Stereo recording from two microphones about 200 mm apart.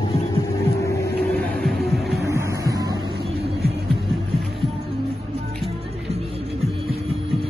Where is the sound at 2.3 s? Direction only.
15° right (ahead or behind).